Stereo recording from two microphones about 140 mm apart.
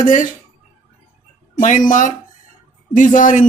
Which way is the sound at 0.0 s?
70° left (ahead or behind).